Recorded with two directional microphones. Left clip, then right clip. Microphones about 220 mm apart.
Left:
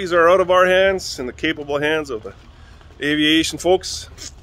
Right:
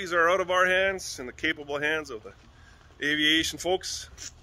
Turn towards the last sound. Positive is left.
turn(degrees=10)  # may be behind; listen again after turning